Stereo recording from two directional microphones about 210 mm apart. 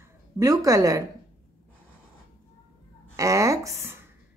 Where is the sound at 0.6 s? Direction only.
15° right (ahead or behind).